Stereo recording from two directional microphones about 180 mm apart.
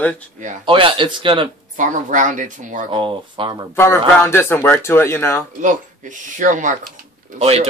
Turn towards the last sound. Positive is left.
turn(degrees=-35)  # may be behind; listen again after turning